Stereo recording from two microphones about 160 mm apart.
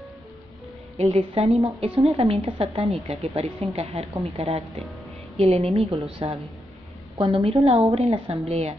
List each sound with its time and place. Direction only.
0.9 s a woman's voice: 40° right (ahead or behind)